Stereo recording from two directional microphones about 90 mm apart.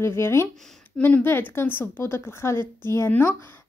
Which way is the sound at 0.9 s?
20° left (ahead or behind).